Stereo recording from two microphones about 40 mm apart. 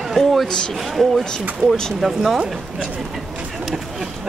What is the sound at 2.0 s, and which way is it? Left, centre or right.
Speech, centre.